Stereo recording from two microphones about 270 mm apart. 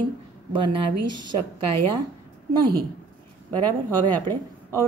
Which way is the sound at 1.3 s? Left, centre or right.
Right.